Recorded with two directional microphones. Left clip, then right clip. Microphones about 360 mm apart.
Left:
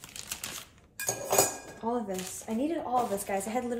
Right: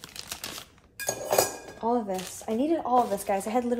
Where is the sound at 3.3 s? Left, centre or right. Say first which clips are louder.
Right 5 dB; right.